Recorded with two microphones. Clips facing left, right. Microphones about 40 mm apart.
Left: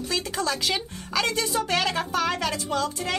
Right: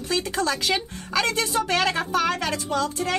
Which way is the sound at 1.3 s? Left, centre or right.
Centre.